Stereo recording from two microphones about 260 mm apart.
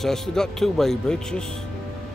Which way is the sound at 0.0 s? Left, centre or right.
Centre.